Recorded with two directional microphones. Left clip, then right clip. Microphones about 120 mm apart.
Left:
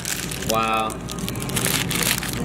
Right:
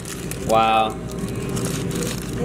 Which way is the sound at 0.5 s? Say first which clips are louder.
Right 5 dB; 15° right (ahead or behind).